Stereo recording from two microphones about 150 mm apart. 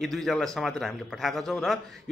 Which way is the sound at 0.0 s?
Centre (ahead or behind).